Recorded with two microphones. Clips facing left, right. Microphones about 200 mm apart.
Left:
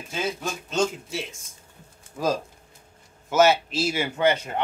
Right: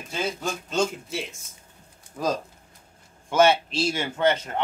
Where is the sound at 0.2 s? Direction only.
Centre (ahead or behind).